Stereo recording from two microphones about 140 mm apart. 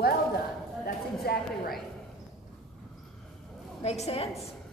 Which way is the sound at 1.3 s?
90° left.